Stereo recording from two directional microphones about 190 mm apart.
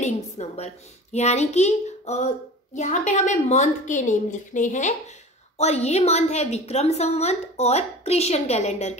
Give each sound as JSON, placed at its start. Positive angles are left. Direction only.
{"t": 0.0, "sound": "a woman's voice", "side_deg": 35}